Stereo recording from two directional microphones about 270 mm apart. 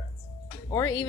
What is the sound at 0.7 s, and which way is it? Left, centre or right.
Speech, centre.